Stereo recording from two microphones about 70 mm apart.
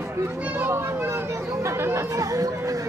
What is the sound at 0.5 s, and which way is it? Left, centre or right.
A child's voice, right.